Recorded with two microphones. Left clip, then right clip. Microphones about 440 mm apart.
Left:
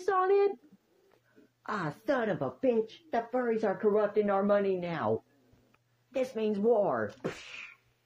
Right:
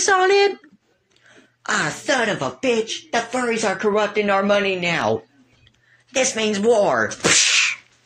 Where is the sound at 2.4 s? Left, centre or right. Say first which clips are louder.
Right 9 dB; left.